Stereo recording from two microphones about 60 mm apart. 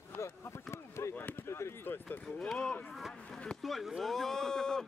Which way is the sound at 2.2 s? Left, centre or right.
Centre.